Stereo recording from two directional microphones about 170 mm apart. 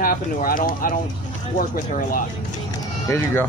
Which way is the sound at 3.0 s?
15° left (ahead or behind).